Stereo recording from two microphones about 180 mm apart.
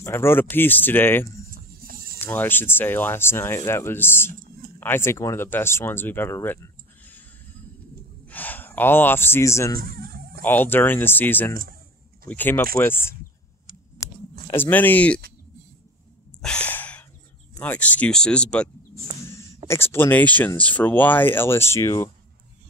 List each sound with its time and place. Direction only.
0.0 s speech: 15° left (ahead or behind)
1.5 s a sound: 55° right (ahead or behind)
2.1 s speech: 10° left (ahead or behind)
8.3 s speech: 10° left (ahead or behind)
9.8 s speech: 55° right (ahead or behind)
10.4 s speech: 10° left (ahead or behind)
14.5 s speech: 10° left (ahead or behind)
16.3 s sigh: 5° left (ahead or behind)
17.6 s speech: 10° left (ahead or behind)
19.7 s speech: 15° left (ahead or behind)